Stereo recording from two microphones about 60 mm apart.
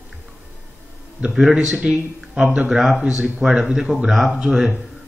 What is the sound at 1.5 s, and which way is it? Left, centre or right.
A man's voice, centre.